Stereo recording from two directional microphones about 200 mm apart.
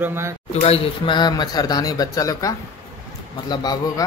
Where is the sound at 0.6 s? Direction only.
30° left (ahead or behind).